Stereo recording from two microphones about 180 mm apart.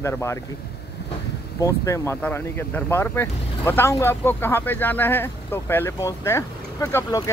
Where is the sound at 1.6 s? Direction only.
15° left (ahead or behind).